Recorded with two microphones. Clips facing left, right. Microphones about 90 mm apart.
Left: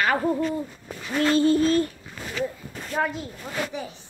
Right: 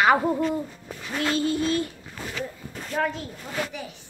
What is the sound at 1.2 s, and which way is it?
Child singing, 35° left (ahead or behind).